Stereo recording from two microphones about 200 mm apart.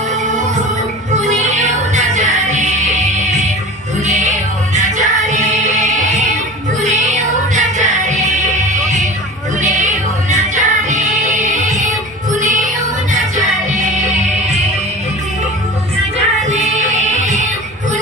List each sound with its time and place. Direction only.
1.3 s music: 35° right (ahead or behind)
13.7 s music: 35° right (ahead or behind)
16.4 s music: 35° right (ahead or behind)